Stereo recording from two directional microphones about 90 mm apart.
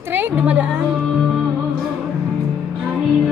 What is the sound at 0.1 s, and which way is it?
Speech, 20° right (ahead or behind).